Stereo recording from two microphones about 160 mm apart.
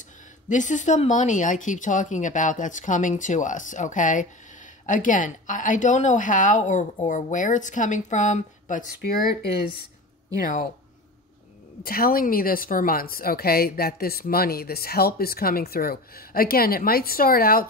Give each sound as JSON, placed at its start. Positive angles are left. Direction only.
{"t": 0.0, "sound": "a woman's voice", "side_deg": 50}
{"t": 11.8, "sound": "a woman's voice", "side_deg": 65}